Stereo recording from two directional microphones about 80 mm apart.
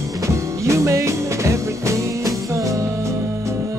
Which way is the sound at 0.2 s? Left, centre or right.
Right.